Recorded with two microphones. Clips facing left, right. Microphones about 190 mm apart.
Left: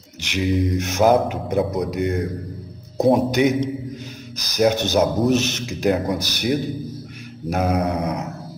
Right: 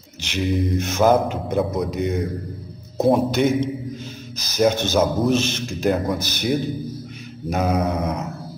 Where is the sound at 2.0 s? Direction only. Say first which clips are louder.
Left 1 dB; 60° left (ahead or behind).